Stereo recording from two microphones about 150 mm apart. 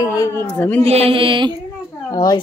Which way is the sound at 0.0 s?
20° left (ahead or behind).